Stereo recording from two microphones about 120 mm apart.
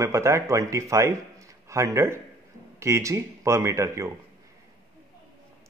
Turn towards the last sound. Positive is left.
turn(degrees=-25)  # may be behind; listen again after turning